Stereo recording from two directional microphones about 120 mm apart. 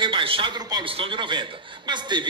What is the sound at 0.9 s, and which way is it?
A man's voice, 45° right (ahead or behind).